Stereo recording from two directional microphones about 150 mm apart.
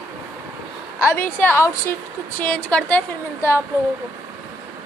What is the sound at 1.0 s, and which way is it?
A woman's voice, 15° left (ahead or behind).